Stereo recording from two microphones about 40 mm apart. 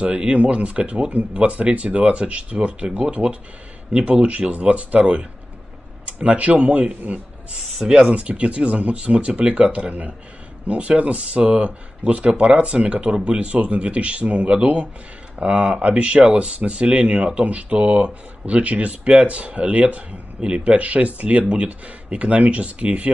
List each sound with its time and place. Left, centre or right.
0.4 s speech: right